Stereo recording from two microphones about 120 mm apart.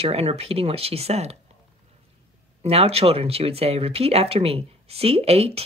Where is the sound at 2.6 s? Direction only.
60° right (ahead or behind).